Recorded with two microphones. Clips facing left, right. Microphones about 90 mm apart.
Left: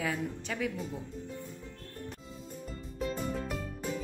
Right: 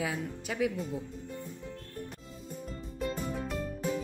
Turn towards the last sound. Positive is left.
turn(degrees=0)  # may be behind; listen again after turning